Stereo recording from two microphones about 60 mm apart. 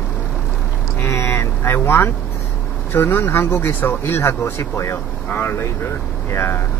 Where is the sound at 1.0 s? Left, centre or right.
Left.